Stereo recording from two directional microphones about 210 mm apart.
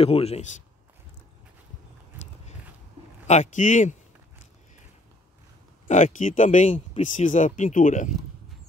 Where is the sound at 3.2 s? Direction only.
35° left (ahead or behind).